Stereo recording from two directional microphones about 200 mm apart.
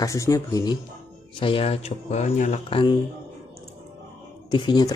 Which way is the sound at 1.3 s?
25° left (ahead or behind).